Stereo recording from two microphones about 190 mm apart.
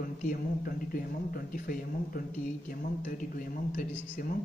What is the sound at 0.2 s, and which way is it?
Speech, 50° left (ahead or behind).